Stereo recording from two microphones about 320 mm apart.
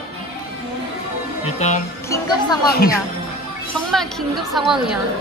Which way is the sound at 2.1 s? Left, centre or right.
Centre.